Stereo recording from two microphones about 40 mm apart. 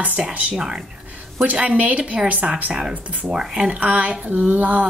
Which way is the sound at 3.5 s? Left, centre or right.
Right.